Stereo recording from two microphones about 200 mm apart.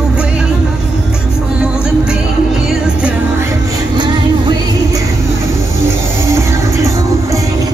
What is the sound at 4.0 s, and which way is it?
Music, 20° right (ahead or behind).